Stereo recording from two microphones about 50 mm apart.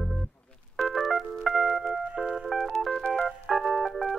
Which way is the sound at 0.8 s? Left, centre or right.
Centre.